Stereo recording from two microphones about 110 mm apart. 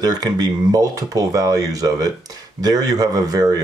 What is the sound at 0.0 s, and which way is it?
Speech, 35° right (ahead or behind).